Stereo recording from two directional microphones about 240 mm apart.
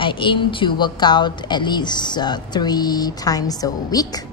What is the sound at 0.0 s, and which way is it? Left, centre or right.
A woman's voice, left.